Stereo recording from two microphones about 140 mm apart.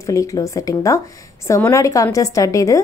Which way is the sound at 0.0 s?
25° left (ahead or behind).